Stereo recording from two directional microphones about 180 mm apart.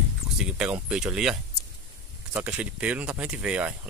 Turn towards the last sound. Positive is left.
turn(degrees=-10)  # may be behind; listen again after turning